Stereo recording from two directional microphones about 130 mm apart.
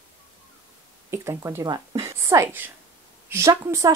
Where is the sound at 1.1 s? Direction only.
20° right (ahead or behind).